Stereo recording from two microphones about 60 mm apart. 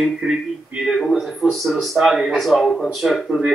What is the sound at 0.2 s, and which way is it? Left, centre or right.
Speech, right.